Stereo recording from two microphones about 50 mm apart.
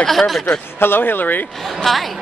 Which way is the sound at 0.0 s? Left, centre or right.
Centre.